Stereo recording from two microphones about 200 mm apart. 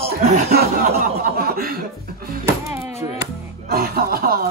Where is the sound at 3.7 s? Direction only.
50° right (ahead or behind).